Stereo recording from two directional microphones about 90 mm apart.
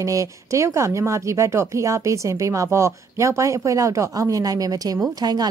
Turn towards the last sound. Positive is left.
turn(degrees=-45)  # may be behind; listen again after turning